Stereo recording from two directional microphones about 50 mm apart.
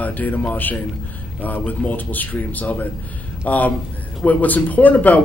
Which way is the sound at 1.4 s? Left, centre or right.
Left.